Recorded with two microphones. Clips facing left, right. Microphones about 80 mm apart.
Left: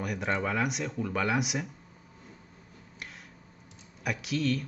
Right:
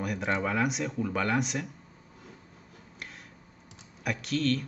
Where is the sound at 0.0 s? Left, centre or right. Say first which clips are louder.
Right 1 dB; centre.